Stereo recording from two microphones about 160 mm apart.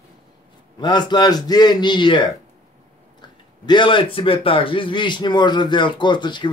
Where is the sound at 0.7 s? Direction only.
25° left (ahead or behind).